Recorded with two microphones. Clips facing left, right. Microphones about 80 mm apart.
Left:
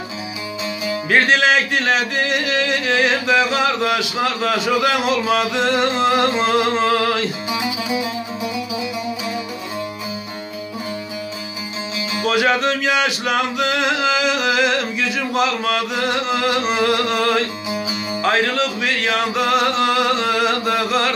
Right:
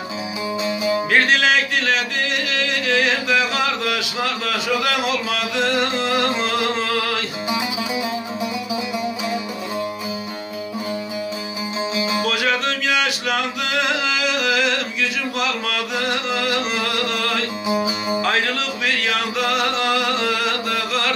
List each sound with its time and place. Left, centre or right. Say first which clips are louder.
0.7 s music: right 3 dB; right
1.3 s a sound: left 2 dB; centre
2.0 s music: left 3 dB; centre
3.6 s a man's voice: left 4 dB; centre
6.0 s music: left 4 dB; centre
12.2 s music: left 7 dB; centre
14.5 s a sound: left 3 dB; centre
15.6 s music: left 3 dB; centre
16.8 s a sound: left 5 dB; centre
18.2 s music: left 7 dB; centre
20.4 s chant: left 4 dB; centre